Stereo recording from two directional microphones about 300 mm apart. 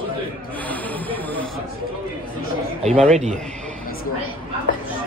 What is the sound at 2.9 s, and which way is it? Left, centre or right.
Speech, centre.